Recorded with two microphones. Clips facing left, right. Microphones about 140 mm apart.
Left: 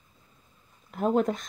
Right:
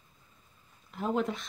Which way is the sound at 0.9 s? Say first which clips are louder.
Left 6 dB; 45° left (ahead or behind).